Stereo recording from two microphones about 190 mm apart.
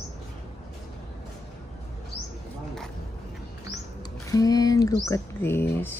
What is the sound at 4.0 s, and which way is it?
Speech, 20° left (ahead or behind).